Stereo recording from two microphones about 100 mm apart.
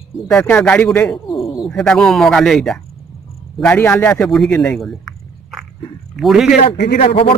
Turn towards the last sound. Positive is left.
turn(degrees=70)  # may be behind; listen again after turning